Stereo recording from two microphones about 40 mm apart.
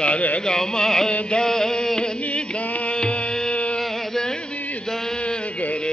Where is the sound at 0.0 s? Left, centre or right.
Left.